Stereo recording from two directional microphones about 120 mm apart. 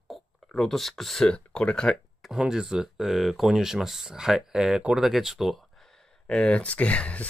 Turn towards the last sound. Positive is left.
turn(degrees=10)  # may be behind; listen again after turning